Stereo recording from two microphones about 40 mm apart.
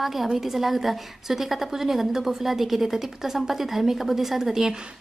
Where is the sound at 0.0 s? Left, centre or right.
Centre.